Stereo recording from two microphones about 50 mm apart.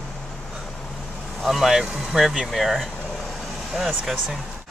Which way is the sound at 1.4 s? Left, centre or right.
Centre.